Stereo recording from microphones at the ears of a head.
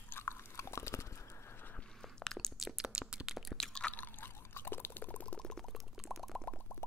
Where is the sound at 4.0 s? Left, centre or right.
Left.